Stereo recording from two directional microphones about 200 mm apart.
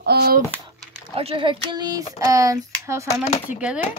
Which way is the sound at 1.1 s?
25° right (ahead or behind).